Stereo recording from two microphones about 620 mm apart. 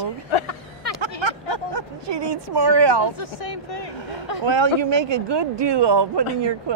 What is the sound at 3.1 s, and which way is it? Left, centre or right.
Speech, left.